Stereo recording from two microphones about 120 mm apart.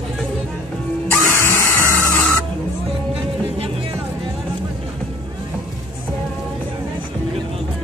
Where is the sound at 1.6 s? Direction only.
20° left (ahead or behind).